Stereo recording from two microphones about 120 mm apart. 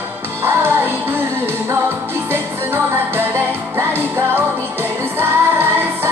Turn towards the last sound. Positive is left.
turn(degrees=-20)  # may be behind; listen again after turning